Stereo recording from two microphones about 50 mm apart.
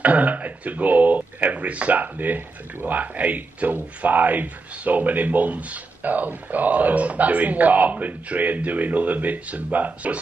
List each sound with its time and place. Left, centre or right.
0.0 s speech: right